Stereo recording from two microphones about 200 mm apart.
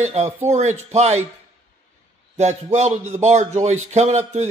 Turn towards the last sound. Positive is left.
turn(degrees=-35)  # may be behind; listen again after turning